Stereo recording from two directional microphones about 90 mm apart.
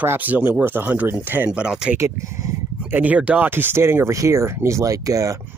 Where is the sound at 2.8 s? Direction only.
20° right (ahead or behind).